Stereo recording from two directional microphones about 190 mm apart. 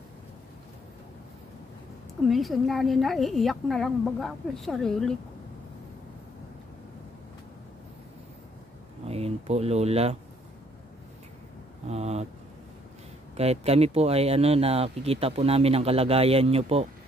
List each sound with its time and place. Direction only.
2.2 s a woman's voice: centre (ahead or behind)
9.0 s a sound: 35° right (ahead or behind)
11.9 s speech: 35° right (ahead or behind)
13.4 s speech: 35° right (ahead or behind)